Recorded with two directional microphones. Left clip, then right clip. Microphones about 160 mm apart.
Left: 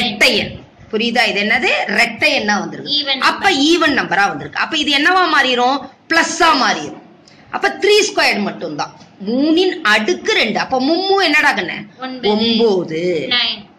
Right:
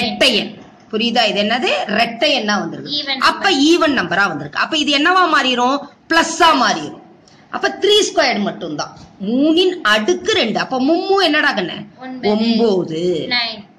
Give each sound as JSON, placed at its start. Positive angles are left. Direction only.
{"t": 0.9, "sound": "a woman's voice", "side_deg": -50}
{"t": 2.5, "sound": "a woman's voice", "side_deg": -20}
{"t": 2.8, "sound": "a woman's voice", "side_deg": -60}
{"t": 12.0, "sound": "a woman's voice", "side_deg": -60}
{"t": 12.8, "sound": "a man's voice", "side_deg": -40}
{"t": 13.3, "sound": "a woman's voice", "side_deg": -60}